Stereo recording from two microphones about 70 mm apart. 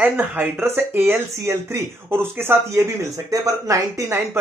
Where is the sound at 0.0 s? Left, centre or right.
Right.